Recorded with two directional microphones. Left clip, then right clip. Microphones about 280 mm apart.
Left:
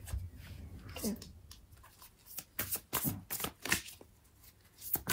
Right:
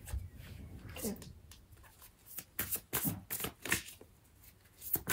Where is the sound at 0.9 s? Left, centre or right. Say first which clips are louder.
Left 2 dB; centre.